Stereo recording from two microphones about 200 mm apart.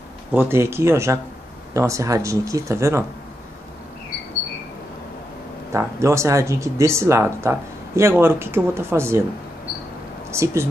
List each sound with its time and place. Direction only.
0.3 s speech: 10° right (ahead or behind)
5.7 s speech: 15° right (ahead or behind)
10.3 s speech: 15° right (ahead or behind)